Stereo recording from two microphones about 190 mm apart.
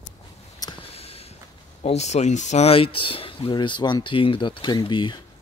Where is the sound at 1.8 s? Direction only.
35° left (ahead or behind).